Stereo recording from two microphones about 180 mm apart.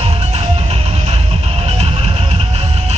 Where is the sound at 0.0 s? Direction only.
35° right (ahead or behind).